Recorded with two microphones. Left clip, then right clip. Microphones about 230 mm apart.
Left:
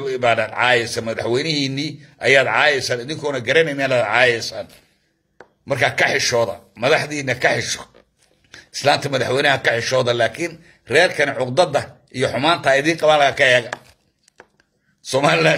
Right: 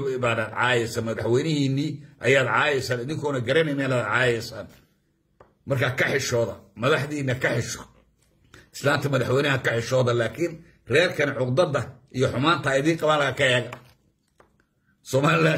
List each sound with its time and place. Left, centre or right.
0.0 s a man's voice: centre
5.7 s a man's voice: centre
15.0 s a man's voice: centre